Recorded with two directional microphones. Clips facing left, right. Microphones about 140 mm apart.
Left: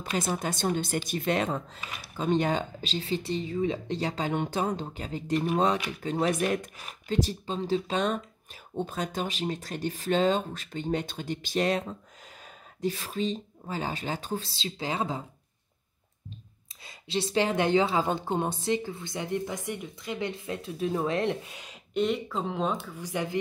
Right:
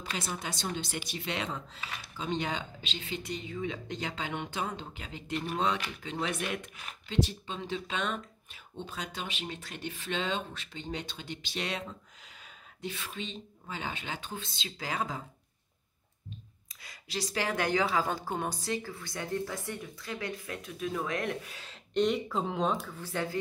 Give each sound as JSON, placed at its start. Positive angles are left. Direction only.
{"t": 0.0, "sound": "speech", "side_deg": 50}
{"t": 16.8, "sound": "a woman's voice", "side_deg": 25}
{"t": 21.9, "sound": "speech", "side_deg": 0}
{"t": 22.9, "sound": "speech", "side_deg": 15}